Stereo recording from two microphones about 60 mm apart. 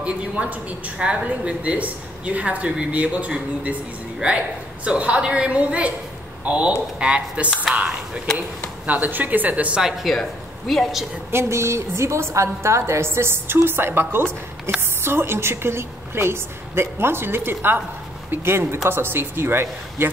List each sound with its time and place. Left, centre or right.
0.0 s a woman's voice: right
9.8 s a woman's voice: centre
11.3 s a woman's voice: right